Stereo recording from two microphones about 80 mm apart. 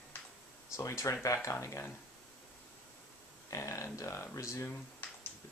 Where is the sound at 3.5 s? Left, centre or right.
Left.